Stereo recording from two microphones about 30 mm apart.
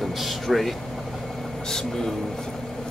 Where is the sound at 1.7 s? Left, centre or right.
Centre.